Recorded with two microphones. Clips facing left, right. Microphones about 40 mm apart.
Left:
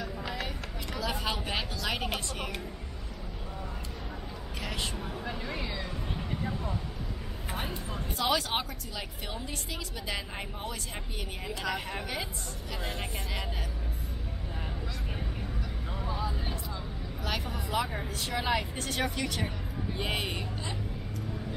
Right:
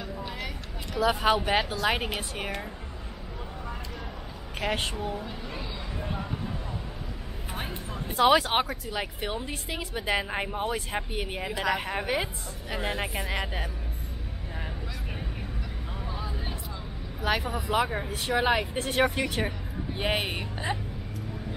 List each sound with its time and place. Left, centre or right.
1.0 s a woman's voice: right
4.6 s speech: right
5.2 s speech: left
8.2 s a woman's voice: right
12.9 s a woman's voice: centre
13.3 s a woman's voice: centre
16.1 s vehicle: centre
17.2 s speech: centre
17.6 s a woman's voice: right